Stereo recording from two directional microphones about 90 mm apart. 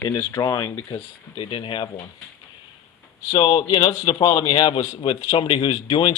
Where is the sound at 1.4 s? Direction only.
65° left (ahead or behind).